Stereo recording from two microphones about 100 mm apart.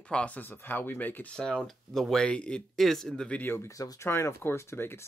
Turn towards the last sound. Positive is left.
turn(degrees=25)  # may be behind; listen again after turning